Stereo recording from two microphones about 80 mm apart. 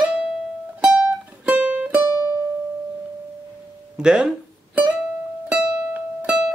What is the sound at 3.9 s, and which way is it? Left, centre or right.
Speech, centre.